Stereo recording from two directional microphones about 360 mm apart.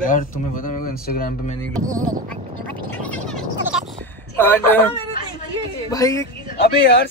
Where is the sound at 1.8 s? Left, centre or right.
Right.